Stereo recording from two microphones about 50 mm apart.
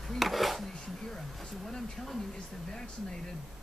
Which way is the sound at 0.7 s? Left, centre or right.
Centre.